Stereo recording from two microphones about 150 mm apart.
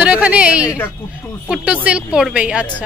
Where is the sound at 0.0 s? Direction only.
10° right (ahead or behind).